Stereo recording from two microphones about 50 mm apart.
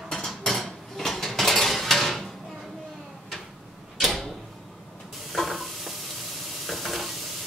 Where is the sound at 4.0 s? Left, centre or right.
Centre.